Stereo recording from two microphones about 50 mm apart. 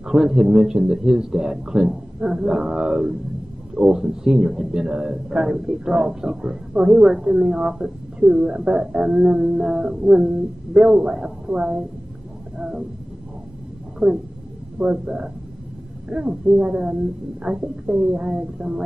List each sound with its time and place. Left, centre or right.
0.0 s speech: centre
12.5 s a sound: centre
14.0 s speech: centre
14.8 s speech: right